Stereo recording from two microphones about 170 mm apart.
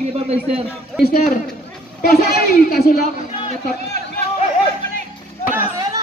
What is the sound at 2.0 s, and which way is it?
A woman's voice, 65° left (ahead or behind).